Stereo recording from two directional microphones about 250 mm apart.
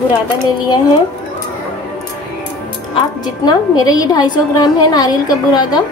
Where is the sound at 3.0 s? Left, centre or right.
Centre.